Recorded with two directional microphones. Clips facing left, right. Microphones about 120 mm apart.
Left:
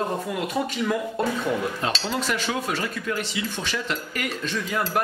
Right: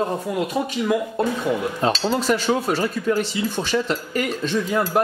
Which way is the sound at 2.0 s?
35° right (ahead or behind).